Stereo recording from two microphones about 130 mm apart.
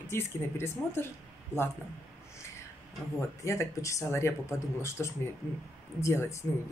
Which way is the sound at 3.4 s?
25° left (ahead or behind).